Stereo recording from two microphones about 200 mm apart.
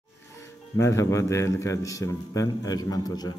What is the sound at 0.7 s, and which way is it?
A man's voice, 15° left (ahead or behind).